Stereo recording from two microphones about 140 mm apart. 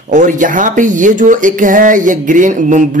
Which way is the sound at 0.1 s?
65° right (ahead or behind).